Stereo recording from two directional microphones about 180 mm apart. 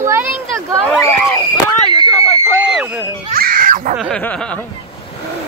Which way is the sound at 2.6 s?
5° right (ahead or behind).